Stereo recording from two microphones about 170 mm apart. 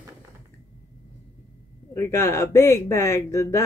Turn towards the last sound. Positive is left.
turn(degrees=15)  # may be behind; listen again after turning